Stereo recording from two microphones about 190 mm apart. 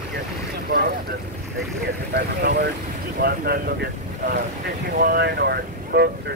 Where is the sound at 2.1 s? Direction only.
60° right (ahead or behind).